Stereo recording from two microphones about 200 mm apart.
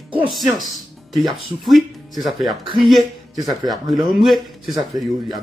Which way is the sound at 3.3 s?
20° right (ahead or behind).